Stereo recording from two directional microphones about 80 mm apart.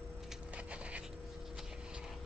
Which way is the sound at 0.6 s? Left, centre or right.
Centre.